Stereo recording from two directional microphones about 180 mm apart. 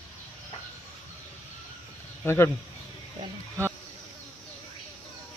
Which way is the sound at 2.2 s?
15° left (ahead or behind).